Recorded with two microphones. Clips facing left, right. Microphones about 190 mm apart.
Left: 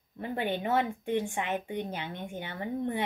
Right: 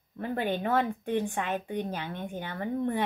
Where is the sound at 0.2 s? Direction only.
15° left (ahead or behind).